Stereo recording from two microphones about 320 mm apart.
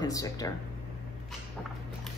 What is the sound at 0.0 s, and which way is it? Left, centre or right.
Speech, centre.